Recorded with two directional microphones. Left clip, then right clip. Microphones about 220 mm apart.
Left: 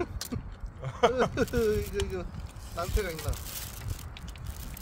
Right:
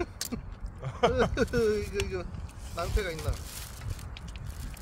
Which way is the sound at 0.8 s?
25° left (ahead or behind).